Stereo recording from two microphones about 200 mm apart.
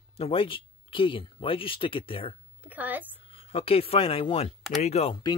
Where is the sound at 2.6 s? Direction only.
10° right (ahead or behind).